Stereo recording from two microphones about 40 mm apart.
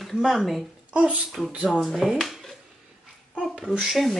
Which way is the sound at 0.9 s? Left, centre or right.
Right.